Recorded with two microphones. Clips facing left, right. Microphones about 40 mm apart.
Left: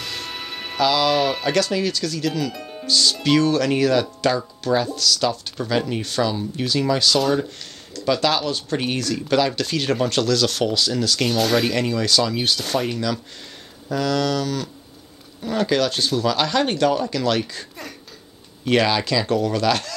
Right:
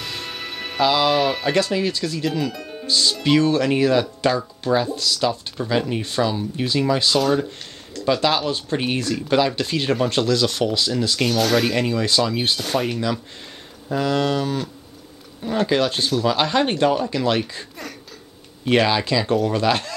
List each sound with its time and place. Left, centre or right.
0.0 s music: centre
0.7 s speech: centre
1.5 s speech: centre
2.5 s music: centre
2.8 s speech: centre
8.0 s speech: centre
11.1 s speech: centre
11.7 s speech: centre
18.7 s speech: centre